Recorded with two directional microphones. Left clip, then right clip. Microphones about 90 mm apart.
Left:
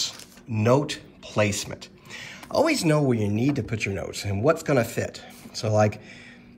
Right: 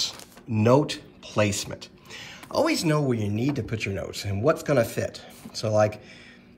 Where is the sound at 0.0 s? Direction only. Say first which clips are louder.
Even; 50° right (ahead or behind).